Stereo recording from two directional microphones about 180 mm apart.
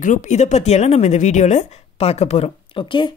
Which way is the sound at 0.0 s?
45° left (ahead or behind).